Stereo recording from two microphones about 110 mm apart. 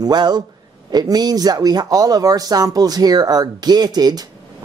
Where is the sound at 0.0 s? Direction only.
40° right (ahead or behind).